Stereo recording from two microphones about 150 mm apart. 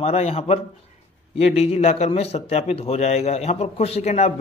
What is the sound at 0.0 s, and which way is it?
A man's voice, 45° left (ahead or behind).